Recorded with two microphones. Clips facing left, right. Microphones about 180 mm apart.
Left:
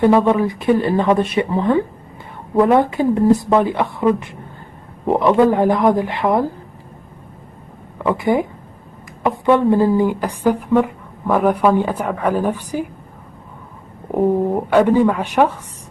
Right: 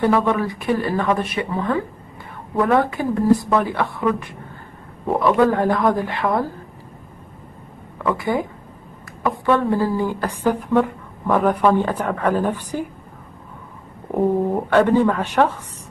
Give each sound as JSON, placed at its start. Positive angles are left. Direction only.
{"t": 0.0, "sound": "speech", "side_deg": 20}
{"t": 8.0, "sound": "speech", "side_deg": 20}
{"t": 9.5, "sound": "speech", "side_deg": 20}
{"t": 14.1, "sound": "speech", "side_deg": 10}